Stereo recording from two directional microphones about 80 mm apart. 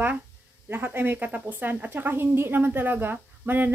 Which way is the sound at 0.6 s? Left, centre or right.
Right.